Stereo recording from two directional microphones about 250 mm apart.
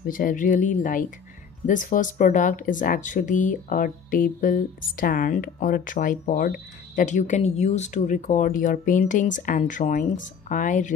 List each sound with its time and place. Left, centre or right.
0.0 s speech: left